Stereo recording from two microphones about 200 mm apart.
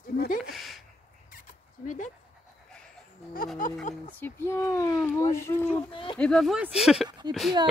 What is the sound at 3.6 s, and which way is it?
Speech, 40° left (ahead or behind).